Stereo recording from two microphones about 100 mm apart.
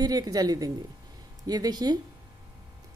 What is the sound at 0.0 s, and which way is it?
A woman's voice, 40° right (ahead or behind).